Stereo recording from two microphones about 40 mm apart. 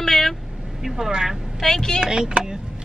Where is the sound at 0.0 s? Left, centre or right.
Centre.